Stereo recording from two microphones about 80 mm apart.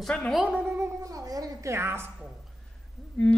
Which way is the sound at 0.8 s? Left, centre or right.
Right.